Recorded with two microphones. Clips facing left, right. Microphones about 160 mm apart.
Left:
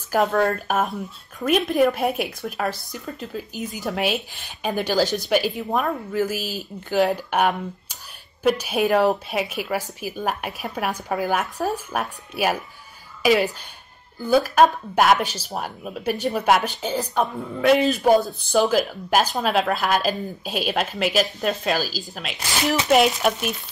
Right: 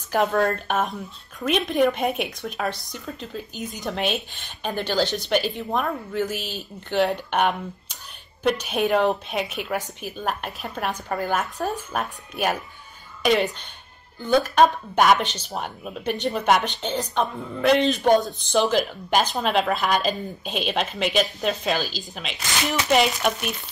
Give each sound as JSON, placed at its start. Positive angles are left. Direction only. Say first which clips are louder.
{"t": 0.1, "sound": "speech", "louder": "left 1 dB", "side_deg": 0}